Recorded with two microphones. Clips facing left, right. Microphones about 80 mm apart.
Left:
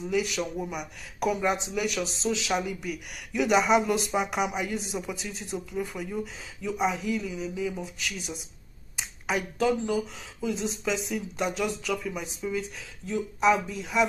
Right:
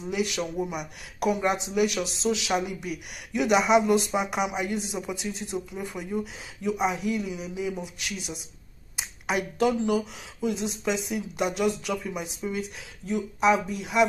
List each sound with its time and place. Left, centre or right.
0.0 s speech: centre